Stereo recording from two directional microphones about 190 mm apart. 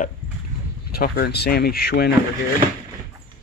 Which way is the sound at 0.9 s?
55° left (ahead or behind).